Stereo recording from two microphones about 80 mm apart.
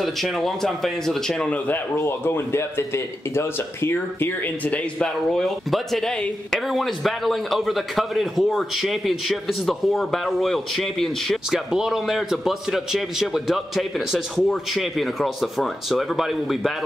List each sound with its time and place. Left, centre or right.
0.0 s a man's voice: centre
2.0 s a man's voice: left; by 16.7 s centre